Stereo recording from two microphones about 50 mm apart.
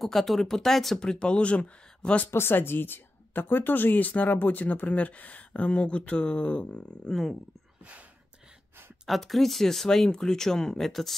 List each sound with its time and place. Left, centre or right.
0.0 s speech: centre
0.9 s speech: centre
2.3 s speech: left
7.1 s speech: centre
9.0 s speech: centre